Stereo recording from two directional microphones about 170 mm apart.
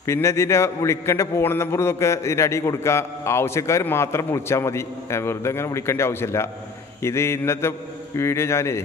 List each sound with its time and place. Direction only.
0.0 s a man's voice: 15° left (ahead or behind)